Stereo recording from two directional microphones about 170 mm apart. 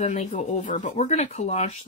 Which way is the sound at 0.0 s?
45° left (ahead or behind).